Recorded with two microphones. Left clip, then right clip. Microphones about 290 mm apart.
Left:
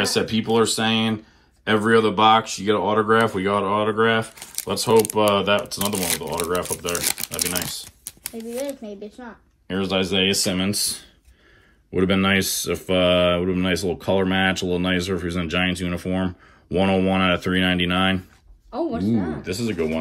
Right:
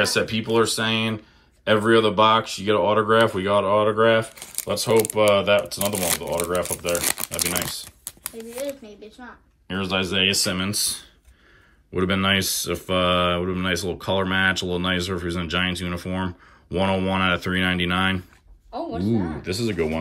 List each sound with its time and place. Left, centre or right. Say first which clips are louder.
0.0 s speech: even; centre
9.7 s speech: left 2 dB; centre
18.8 s a man's voice: left 2 dB; centre
19.4 s speech: even; centre